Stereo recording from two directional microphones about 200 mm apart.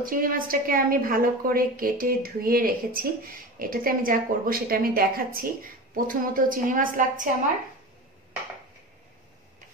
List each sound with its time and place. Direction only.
0.0 s a woman's voice: 45° right (ahead or behind)